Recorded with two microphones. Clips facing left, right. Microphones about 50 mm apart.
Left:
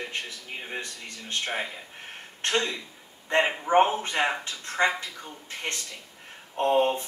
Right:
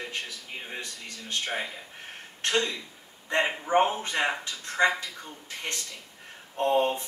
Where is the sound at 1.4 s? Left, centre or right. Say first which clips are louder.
Left 2 dB; centre.